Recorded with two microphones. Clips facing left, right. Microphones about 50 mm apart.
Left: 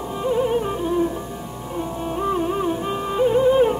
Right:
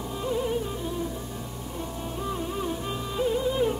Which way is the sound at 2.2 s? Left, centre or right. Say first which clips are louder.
Left 9 dB; left.